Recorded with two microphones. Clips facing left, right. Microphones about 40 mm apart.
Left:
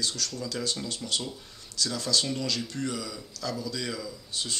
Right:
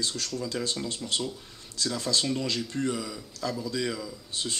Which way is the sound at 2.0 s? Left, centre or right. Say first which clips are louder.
Right 1 dB; right.